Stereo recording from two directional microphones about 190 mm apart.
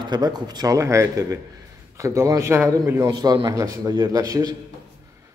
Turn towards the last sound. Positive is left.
turn(degrees=-20)  # may be behind; listen again after turning